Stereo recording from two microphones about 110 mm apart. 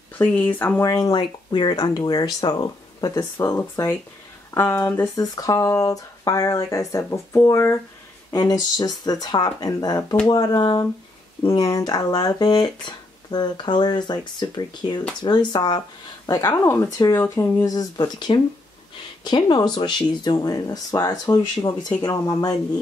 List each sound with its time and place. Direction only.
0.2 s speech: 15° left (ahead or behind)
0.8 s speech: 30° left (ahead or behind)
5.1 s speech: 35° left (ahead or behind)
8.3 s speech: 35° left (ahead or behind)
16.6 s speech: 25° left (ahead or behind)
17.6 s speech: 40° left (ahead or behind)